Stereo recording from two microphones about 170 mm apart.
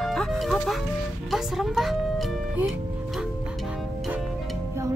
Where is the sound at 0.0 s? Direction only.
5° left (ahead or behind).